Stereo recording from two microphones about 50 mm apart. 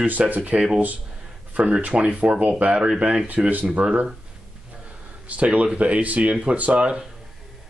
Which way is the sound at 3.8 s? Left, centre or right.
Right.